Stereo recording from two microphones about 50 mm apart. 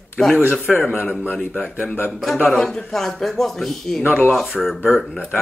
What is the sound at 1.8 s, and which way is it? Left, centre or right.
Speech, left.